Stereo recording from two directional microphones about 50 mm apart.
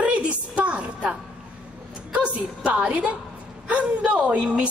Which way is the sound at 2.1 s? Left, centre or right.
Right.